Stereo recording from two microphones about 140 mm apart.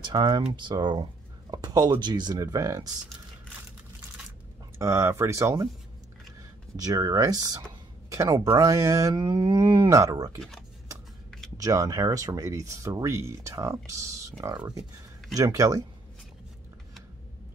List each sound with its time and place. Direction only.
0.0 s speech: 30° right (ahead or behind)
4.7 s speech: 20° right (ahead or behind)
6.8 s speech: 25° right (ahead or behind)
11.5 s speech: 25° right (ahead or behind)